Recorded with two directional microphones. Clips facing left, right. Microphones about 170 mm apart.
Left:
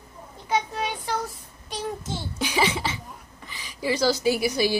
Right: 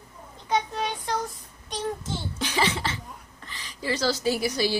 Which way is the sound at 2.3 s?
10° left (ahead or behind).